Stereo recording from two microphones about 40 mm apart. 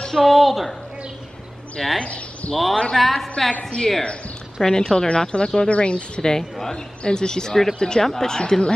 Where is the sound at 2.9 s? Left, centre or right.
Centre.